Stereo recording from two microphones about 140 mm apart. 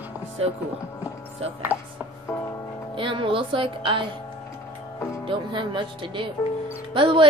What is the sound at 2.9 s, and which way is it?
Speech, 35° right (ahead or behind).